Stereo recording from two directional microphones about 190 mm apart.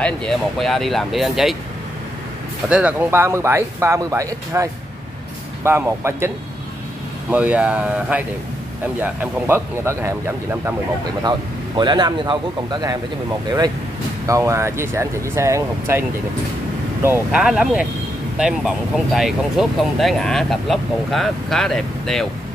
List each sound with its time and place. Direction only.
0.0 s speech: 5° left (ahead or behind)
2.7 s speech: 10° right (ahead or behind)
14.2 s speech: 15° right (ahead or behind); by 22.3 s centre (ahead or behind)